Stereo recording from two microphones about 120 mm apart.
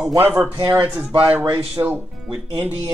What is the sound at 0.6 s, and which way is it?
Speech, 35° right (ahead or behind).